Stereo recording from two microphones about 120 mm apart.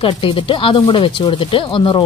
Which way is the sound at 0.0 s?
45° left (ahead or behind).